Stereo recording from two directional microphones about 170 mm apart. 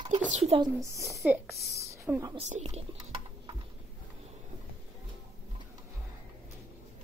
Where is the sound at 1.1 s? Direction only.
5° right (ahead or behind).